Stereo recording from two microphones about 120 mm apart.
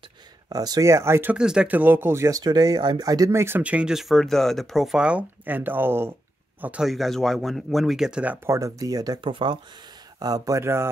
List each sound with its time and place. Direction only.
0.5 s speech: 30° right (ahead or behind)
1.3 s speech: 5° right (ahead or behind)
6.9 s speech: centre (ahead or behind)
8.5 s speech: 25° right (ahead or behind)
9.2 s speech: 40° right (ahead or behind); by 10.9 s 20° right (ahead or behind)